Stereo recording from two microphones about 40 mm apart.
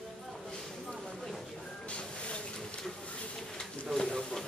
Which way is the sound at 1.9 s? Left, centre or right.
Left.